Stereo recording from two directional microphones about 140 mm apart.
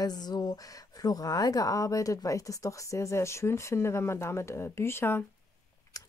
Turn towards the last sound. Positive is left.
turn(degrees=15)  # may be behind; listen again after turning